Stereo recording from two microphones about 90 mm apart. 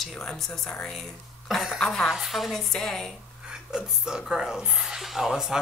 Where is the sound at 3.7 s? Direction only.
5° right (ahead or behind).